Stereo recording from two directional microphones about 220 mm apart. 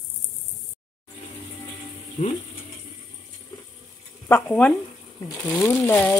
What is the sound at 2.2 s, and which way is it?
Ratchet, 35° left (ahead or behind).